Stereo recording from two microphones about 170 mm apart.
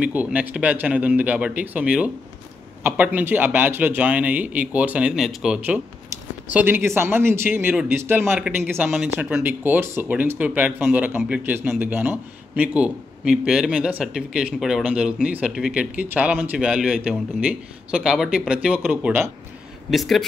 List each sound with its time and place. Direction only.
0.0 s a man's voice: 10° right (ahead or behind)
8.8 s a man's voice: centre (ahead or behind)
9.1 s a man's voice: 10° right (ahead or behind)